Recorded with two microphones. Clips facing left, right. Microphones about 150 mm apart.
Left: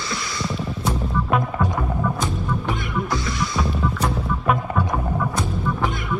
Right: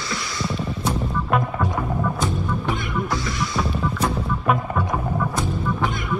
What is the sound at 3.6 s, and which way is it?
Music, centre (ahead or behind).